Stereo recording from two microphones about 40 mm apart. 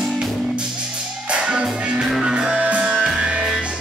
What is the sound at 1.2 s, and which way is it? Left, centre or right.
Music, right.